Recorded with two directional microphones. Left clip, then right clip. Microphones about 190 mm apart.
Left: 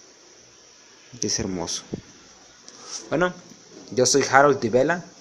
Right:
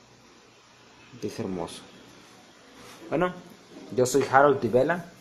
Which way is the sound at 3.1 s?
25° left (ahead or behind).